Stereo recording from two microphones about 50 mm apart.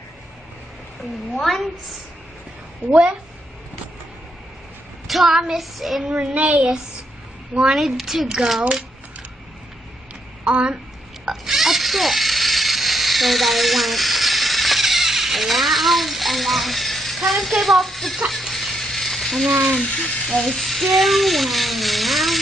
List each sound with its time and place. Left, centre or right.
1.4 s speech: centre
2.9 s a child's voice: centre
5.0 s speech: centre
6.0 s speech: centre
7.5 s a child's voice: centre
7.8 s a child's voice: centre
10.4 s speech: right
11.2 s a sound: centre
19.5 s speech: centre